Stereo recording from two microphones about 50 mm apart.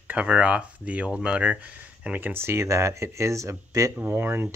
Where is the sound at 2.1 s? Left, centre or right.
Right.